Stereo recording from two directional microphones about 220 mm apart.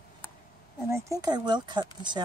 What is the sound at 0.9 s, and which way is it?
Speech, 15° right (ahead or behind).